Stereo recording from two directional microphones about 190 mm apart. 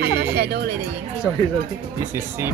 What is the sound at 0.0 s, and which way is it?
Music, 60° right (ahead or behind).